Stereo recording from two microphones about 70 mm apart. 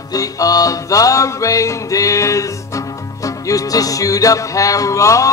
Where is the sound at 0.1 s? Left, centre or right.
Left.